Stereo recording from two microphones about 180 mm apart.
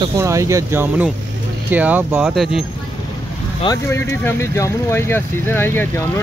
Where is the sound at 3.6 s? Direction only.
15° left (ahead or behind).